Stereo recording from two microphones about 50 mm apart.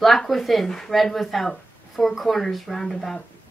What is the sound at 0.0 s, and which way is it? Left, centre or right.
Speech, centre.